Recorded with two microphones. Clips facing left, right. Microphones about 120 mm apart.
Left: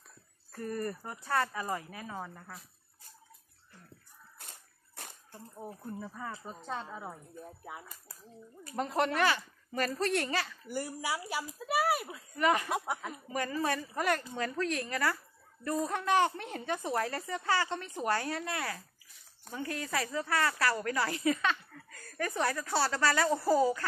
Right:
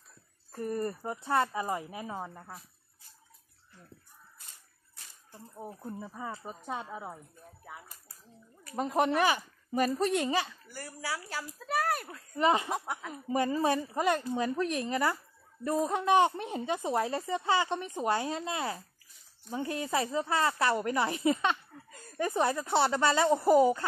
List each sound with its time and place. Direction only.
0.5 s speech: 20° right (ahead or behind)
4.4 s dog: 60° left (ahead or behind)
5.6 s speech: 5° right (ahead or behind)
5.9 s speech: 15° right (ahead or behind)
8.7 s speech: 10° right (ahead or behind)
10.7 s speech: 15° left (ahead or behind)
12.4 s speech: 25° right (ahead or behind)
12.7 s speech: 10° left (ahead or behind)
13.1 s speech: 25° right (ahead or behind)